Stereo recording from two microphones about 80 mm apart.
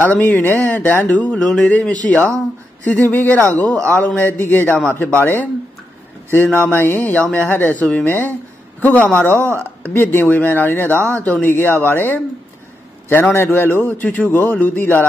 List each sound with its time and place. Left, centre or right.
0.0 s a man's voice: left